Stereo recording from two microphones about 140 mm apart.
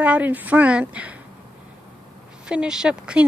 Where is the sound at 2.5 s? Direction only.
5° right (ahead or behind).